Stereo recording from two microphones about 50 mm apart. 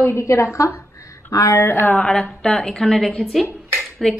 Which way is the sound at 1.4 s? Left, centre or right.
Left.